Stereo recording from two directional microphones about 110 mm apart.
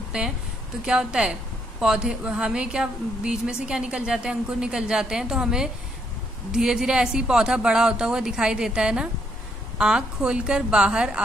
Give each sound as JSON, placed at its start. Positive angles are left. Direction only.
{"t": 0.8, "sound": "speech", "side_deg": -10}